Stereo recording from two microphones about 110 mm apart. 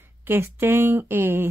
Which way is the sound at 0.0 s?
20° right (ahead or behind).